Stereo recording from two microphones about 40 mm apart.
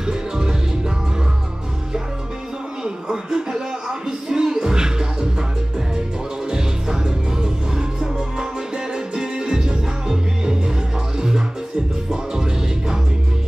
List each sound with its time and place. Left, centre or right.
0.0 s music: centre
2.8 s a sound: centre
4.3 s music: centre
6.5 s music: centre